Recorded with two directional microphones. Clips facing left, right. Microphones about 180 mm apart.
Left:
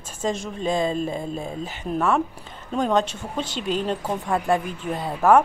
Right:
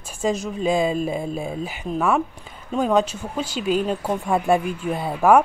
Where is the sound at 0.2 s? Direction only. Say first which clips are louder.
Right 3 dB; 5° right (ahead or behind).